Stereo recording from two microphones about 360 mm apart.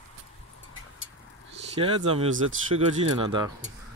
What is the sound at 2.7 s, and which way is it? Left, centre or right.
Speech, right.